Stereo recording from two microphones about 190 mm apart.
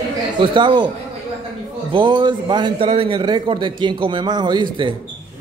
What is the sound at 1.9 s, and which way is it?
A man's voice, 25° right (ahead or behind).